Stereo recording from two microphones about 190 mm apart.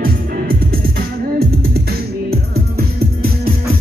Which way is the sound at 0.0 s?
50° right (ahead or behind).